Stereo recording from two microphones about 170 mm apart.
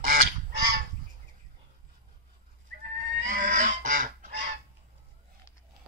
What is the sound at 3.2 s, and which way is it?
Goose, 50° right (ahead or behind).